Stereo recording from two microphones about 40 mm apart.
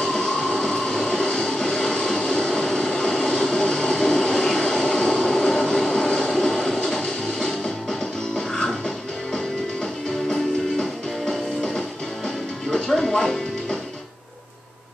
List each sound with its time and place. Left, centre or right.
0.0 s train: centre
1.0 s vehicle: left
6.8 s music: centre
10.3 s music: centre